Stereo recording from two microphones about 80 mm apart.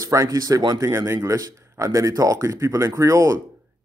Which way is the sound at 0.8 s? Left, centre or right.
Right.